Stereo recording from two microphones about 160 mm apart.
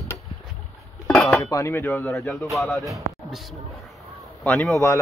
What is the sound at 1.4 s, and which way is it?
Dishes, 20° left (ahead or behind).